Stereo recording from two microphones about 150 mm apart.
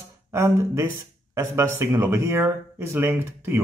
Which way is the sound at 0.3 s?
20° right (ahead or behind).